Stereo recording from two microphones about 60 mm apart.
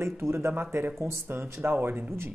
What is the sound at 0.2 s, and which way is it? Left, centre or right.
Speech, right.